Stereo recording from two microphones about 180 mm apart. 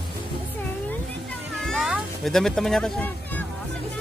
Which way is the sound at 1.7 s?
Centre (ahead or behind).